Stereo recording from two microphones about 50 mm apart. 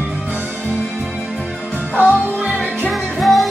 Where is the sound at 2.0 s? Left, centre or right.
Right.